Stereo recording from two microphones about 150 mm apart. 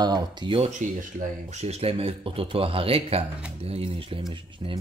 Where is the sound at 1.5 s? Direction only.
45° right (ahead or behind).